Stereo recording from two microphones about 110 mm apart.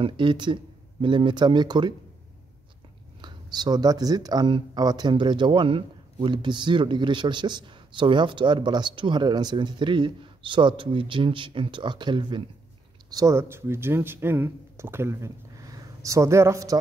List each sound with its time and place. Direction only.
0.0 s speech: 45° right (ahead or behind)
3.2 s speech: 40° right (ahead or behind)
13.1 s speech: 30° right (ahead or behind)